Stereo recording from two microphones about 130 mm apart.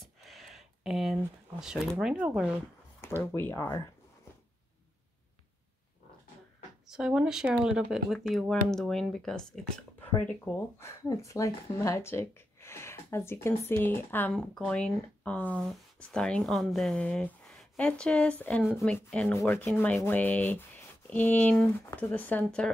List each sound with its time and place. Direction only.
0.2 s a sound: centre (ahead or behind)
3.2 s speech: 15° left (ahead or behind)
6.9 s speech: 5° right (ahead or behind)
10.0 s speech: 15° left (ahead or behind)
18.6 s speech: 5° right (ahead or behind)
18.9 s speech: 10° left (ahead or behind)